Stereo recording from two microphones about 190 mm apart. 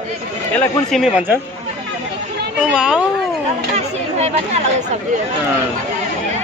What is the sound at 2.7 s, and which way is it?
Speech, 5° right (ahead or behind).